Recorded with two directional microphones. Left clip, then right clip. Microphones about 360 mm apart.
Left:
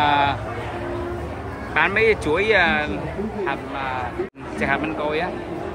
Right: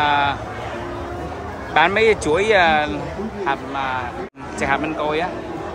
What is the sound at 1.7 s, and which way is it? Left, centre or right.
Speech, centre.